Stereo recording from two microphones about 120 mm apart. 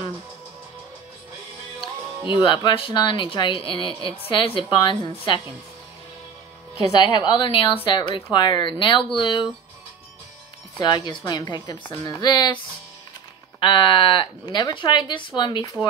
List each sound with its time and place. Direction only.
1.8 s a woman's voice: 45° left (ahead or behind)
7.0 s a woman's voice: 40° left (ahead or behind)
10.8 s a woman's voice: 40° left (ahead or behind)
13.6 s a woman's voice: 45° left (ahead or behind)